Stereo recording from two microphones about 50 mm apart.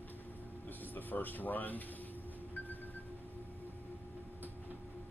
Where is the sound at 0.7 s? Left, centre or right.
Left.